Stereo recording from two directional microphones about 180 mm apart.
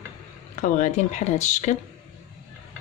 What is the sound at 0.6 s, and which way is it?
Speech, 45° left (ahead or behind).